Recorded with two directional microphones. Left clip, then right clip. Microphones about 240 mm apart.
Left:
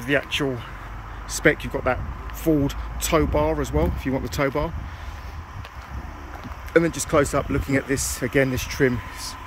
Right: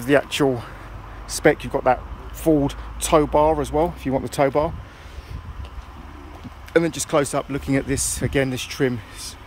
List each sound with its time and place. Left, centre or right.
0.0 s speech: right
6.7 s speech: centre